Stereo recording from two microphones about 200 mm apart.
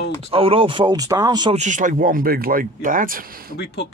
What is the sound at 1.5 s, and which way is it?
Speech, 35° right (ahead or behind).